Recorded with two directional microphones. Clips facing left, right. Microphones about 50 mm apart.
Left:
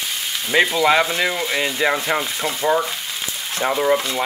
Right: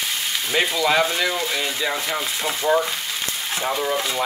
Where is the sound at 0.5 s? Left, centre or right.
Left.